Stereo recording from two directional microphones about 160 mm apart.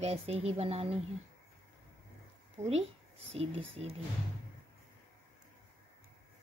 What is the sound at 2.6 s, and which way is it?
Speech, 40° right (ahead or behind).